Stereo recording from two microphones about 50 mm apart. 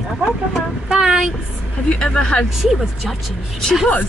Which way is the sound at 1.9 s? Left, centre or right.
Left.